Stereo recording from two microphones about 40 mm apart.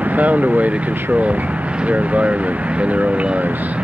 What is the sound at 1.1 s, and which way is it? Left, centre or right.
Speech, right.